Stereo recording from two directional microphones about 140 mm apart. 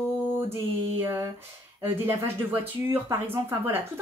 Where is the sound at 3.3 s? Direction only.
15° right (ahead or behind).